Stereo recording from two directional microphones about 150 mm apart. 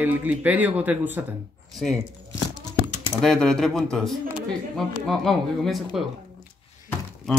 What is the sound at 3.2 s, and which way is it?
Speech, 5° left (ahead or behind).